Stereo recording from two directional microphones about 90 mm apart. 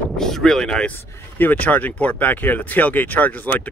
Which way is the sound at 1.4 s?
20° left (ahead or behind).